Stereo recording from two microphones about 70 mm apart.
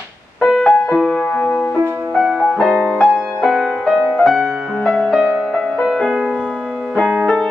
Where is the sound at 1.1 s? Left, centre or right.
Centre.